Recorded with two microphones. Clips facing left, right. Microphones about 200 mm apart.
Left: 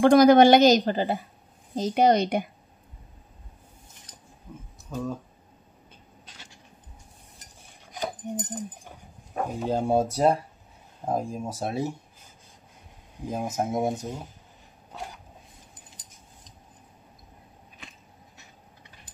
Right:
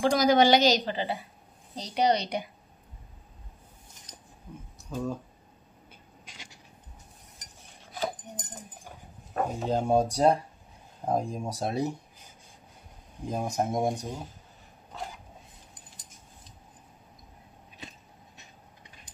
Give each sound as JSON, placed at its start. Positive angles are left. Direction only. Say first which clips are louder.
{"t": 0.0, "sound": "a woman's voice", "louder": "left 7 dB", "side_deg": 55}
{"t": 4.8, "sound": "speech", "louder": "left 1 dB", "side_deg": 0}
{"t": 6.2, "sound": "a sound", "louder": "right 1 dB", "side_deg": -10}
{"t": 7.9, "sound": "dog", "louder": "left 2 dB", "side_deg": 20}
{"t": 9.3, "sound": "speech", "louder": "left 1 dB", "side_deg": 10}
{"t": 13.2, "sound": "speech", "louder": "left 1 dB", "side_deg": 5}